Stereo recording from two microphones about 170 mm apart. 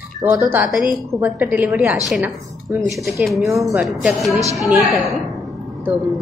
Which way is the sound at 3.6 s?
5° right (ahead or behind).